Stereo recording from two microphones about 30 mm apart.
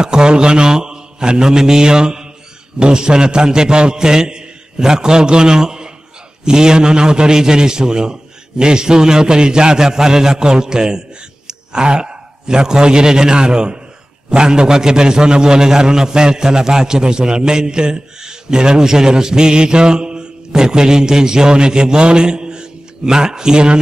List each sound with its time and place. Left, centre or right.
0.0 s a man's voice: right